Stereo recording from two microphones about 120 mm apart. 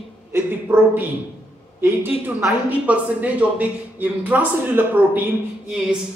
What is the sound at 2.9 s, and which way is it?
A man's voice, 10° right (ahead or behind).